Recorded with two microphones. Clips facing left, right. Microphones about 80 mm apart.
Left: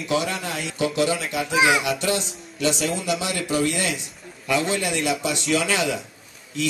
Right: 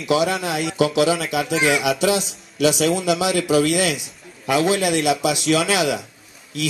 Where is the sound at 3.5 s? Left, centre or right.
Right.